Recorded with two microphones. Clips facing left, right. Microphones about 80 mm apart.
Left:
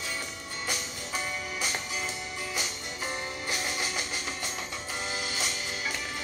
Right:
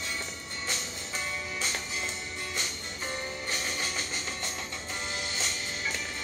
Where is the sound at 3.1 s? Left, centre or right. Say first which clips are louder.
Even; centre.